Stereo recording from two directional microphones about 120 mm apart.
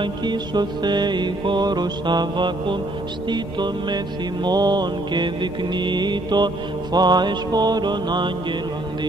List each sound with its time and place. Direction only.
0.0 s music: 40° right (ahead or behind)